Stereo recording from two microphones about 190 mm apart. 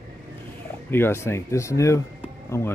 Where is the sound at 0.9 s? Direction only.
10° left (ahead or behind).